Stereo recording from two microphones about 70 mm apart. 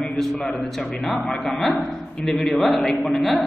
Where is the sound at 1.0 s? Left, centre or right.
Centre.